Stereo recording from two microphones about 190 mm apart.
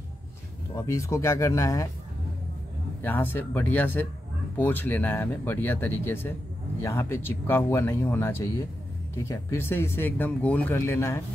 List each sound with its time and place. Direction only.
0.7 s speech: 15° left (ahead or behind)
3.0 s speech: 10° left (ahead or behind)